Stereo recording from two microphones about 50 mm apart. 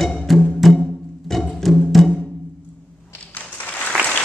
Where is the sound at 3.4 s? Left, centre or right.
Left.